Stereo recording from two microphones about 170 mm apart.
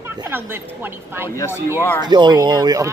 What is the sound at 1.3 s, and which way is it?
Speech, 15° left (ahead or behind).